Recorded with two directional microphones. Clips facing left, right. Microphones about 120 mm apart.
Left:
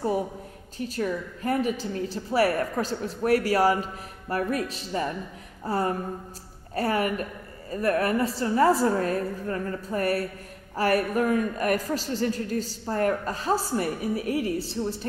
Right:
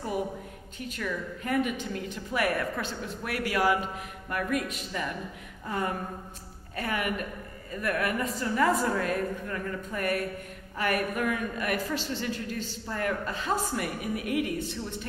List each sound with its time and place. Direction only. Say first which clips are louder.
0.7 s a woman's voice: left 6 dB; 35° left (ahead or behind)